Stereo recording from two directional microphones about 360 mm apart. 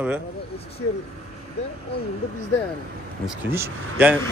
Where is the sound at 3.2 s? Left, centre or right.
Centre.